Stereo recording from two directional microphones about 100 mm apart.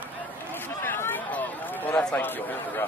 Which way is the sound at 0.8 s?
20° left (ahead or behind).